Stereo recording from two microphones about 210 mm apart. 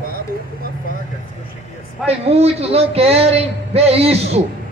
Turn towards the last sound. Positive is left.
turn(degrees=-30)  # may be behind; listen again after turning